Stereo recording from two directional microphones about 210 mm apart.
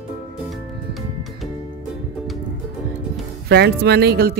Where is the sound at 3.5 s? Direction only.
50° right (ahead or behind).